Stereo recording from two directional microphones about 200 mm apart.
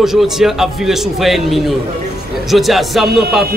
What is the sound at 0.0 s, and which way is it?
A man's voice, centre (ahead or behind).